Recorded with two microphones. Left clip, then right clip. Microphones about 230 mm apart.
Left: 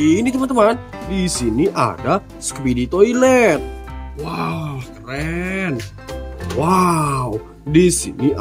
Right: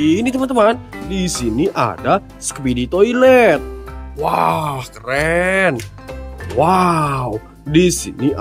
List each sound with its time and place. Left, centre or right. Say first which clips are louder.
0.0 s speech: even; centre
4.2 s speech: right 9 dB; centre
6.6 s speech: right 3 dB; centre